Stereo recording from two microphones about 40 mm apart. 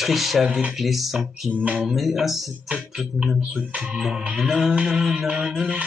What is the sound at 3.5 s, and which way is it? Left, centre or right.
Speech, right.